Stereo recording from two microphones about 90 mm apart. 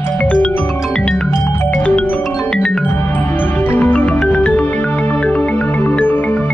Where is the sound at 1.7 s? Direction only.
10° left (ahead or behind).